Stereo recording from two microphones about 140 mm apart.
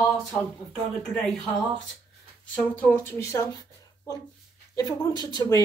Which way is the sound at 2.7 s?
15° left (ahead or behind).